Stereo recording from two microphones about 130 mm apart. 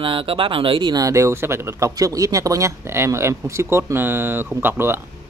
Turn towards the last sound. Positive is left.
turn(degrees=-15)  # may be behind; listen again after turning